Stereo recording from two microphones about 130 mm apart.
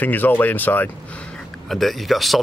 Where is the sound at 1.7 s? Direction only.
Centre (ahead or behind).